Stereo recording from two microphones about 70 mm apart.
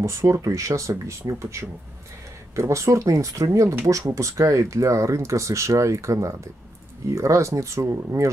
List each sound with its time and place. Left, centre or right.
0.0 s speech: right